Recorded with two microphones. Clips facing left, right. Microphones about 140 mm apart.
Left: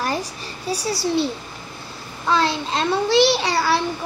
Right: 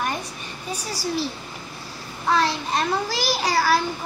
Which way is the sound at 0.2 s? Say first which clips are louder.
Left 4 dB; 85° left.